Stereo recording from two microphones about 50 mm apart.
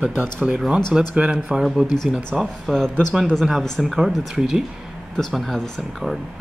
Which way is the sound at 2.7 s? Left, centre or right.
Centre.